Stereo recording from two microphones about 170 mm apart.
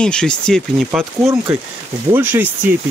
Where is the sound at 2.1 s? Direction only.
10° right (ahead or behind).